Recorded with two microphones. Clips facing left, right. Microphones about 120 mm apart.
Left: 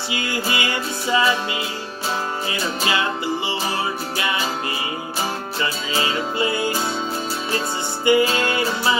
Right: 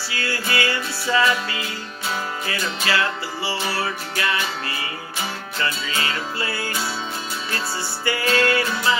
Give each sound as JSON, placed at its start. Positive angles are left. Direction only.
{"t": 0.1, "sound": "music", "side_deg": 20}
{"t": 3.7, "sound": "music", "side_deg": 20}
{"t": 5.6, "sound": "music", "side_deg": 20}
{"t": 8.0, "sound": "music", "side_deg": 20}